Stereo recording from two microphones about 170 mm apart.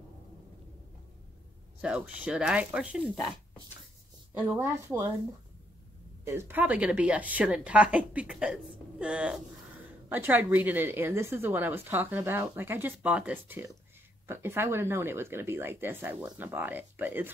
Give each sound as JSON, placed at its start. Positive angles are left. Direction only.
{"t": 1.8, "sound": "a woman's voice", "side_deg": -5}
{"t": 4.3, "sound": "a woman's voice", "side_deg": -10}
{"t": 6.2, "sound": "a woman's voice", "side_deg": -15}